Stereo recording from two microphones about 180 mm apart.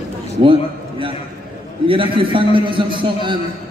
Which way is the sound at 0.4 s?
30° right (ahead or behind).